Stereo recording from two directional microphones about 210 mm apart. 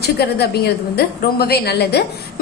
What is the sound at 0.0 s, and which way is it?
A woman's voice, 50° left (ahead or behind).